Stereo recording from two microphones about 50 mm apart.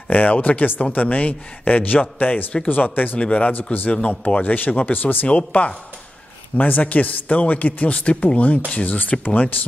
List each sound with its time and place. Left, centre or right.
0.1 s a man's voice: left
3.2 s speech: left
4.4 s a man's voice: left